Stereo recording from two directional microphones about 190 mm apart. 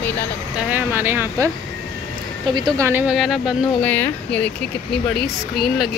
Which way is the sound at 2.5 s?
25° right (ahead or behind).